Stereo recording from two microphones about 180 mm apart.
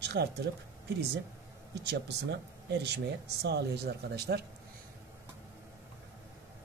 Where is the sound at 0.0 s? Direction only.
70° right (ahead or behind).